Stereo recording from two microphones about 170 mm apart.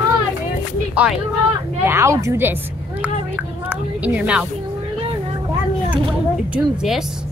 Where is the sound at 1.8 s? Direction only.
15° right (ahead or behind).